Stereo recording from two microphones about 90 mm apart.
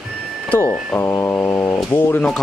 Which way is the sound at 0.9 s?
25° left (ahead or behind).